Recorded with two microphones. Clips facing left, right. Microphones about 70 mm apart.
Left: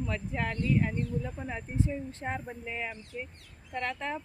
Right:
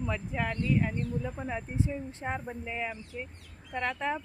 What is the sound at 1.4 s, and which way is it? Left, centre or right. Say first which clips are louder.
Speech: even; centre.